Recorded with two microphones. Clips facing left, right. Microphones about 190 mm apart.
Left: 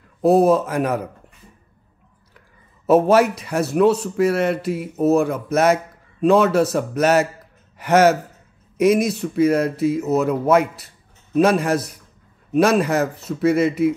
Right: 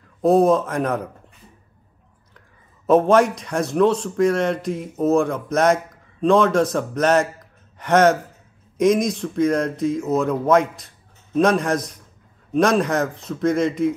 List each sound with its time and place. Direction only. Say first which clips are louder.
0.2 s a man's voice: left 1 dB; 5° left (ahead or behind)
2.9 s a man's voice: left 1 dB; 5° left (ahead or behind)